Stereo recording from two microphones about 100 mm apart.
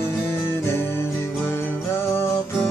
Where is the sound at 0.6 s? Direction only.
25° left (ahead or behind).